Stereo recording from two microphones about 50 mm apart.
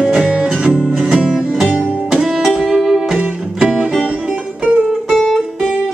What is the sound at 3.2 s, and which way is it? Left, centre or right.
Music, centre.